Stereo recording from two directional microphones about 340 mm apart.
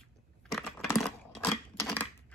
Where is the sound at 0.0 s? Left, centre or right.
Centre.